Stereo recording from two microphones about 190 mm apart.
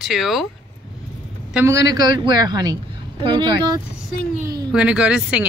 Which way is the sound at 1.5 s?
10° right (ahead or behind).